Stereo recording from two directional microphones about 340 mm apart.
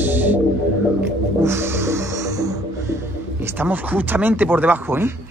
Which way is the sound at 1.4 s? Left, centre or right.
Centre.